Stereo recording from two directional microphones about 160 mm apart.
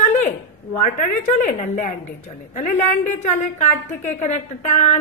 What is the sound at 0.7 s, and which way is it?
A woman's voice, 50° left (ahead or behind).